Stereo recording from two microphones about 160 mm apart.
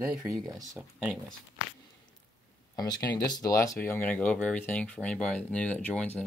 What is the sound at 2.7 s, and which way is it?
Speech, 25° left (ahead or behind).